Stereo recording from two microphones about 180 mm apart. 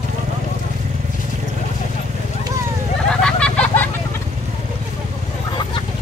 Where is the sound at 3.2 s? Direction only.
5° left (ahead or behind).